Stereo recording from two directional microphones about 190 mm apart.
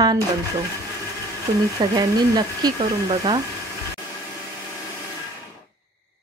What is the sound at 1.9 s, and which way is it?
A woman's voice, 20° right (ahead or behind).